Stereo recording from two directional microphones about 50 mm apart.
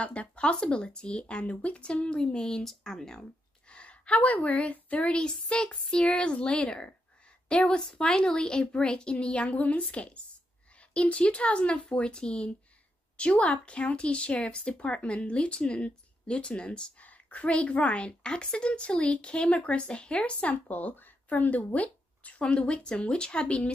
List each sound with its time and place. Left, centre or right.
0.0 s a woman's voice: left
3.7 s a woman's voice: left
5.1 s a woman's voice: centre